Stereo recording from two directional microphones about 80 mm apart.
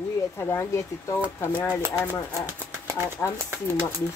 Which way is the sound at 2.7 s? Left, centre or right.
Right.